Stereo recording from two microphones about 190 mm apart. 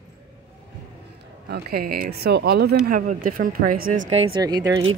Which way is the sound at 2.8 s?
45° right (ahead or behind).